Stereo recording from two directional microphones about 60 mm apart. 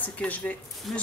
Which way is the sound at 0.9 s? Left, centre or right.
Centre.